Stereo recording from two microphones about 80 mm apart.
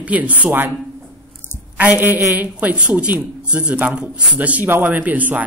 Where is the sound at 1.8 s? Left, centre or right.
Right.